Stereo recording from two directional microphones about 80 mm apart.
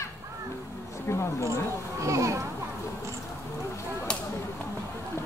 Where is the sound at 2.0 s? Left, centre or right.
Right.